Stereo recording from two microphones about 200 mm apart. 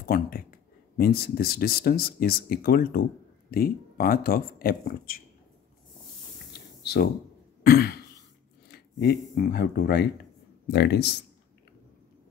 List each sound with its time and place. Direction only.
0.0 s speech: 45° left (ahead or behind)
6.8 s a sound: 55° left (ahead or behind)
7.6 s throat clearing: 50° left (ahead or behind)
8.7 s speech: 50° left (ahead or behind)